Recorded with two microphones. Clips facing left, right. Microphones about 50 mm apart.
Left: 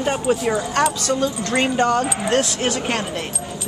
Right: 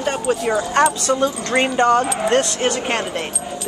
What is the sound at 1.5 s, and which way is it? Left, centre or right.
Speech, centre.